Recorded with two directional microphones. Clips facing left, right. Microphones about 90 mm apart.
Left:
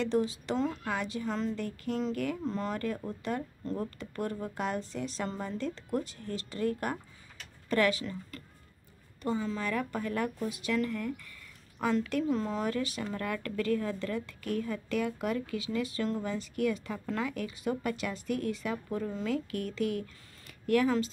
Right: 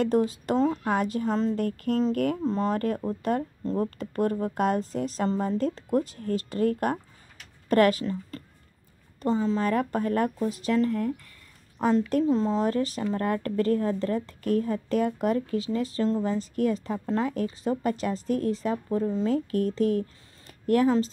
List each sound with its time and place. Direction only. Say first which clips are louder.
0.0 s a woman's voice: right 6 dB; 45° right (ahead or behind)
3.6 s a woman's voice: right 7 dB; 35° right (ahead or behind)